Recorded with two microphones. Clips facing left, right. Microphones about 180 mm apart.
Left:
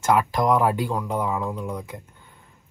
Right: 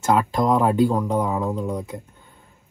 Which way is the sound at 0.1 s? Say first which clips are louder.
Right 1 dB; 25° right (ahead or behind).